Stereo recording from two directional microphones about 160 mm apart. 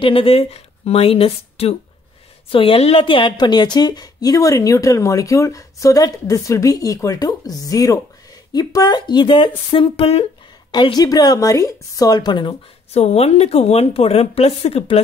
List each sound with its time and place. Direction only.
0.0 s a woman's voice: 35° left (ahead or behind)
10.7 s a woman's voice: 25° left (ahead or behind)
12.9 s speech: 40° left (ahead or behind)